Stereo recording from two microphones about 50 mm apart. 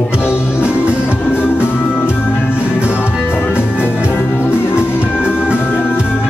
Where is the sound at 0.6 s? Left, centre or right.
Right.